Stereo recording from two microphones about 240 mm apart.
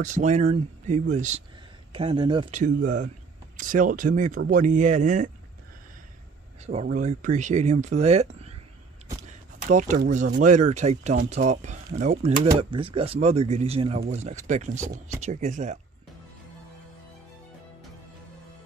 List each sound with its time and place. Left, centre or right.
0.0 s speech: right
2.5 s speech: right
6.6 s speech: right
9.7 s speech: right